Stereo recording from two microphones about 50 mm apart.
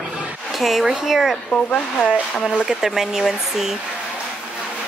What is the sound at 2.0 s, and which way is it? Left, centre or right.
Speech, centre.